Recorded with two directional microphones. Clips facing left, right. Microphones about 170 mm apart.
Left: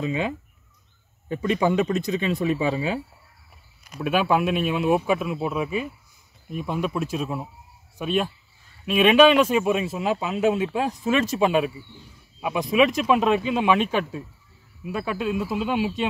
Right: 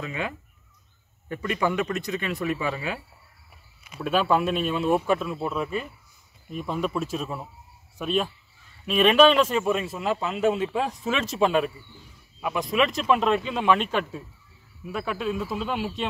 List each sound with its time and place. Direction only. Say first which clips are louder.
0.0 s speech: left 6 dB; 20° left (ahead or behind)
3.8 s a man's voice: left 1 dB; centre (ahead or behind)